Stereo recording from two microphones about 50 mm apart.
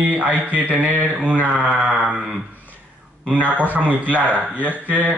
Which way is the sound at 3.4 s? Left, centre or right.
Right.